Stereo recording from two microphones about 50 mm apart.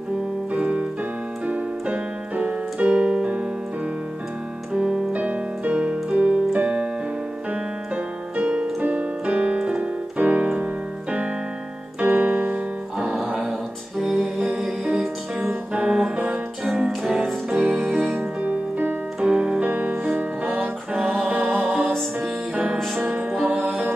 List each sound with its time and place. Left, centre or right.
0.5 s piano: right
2.9 s piano: centre
5.1 s keyboard: right
7.9 s piano: right
12.0 s keyboard: right
12.9 s music: centre
16.6 s music: centre
17.5 s music: right
19.1 s music: centre
19.7 s music: right
22.9 s music: right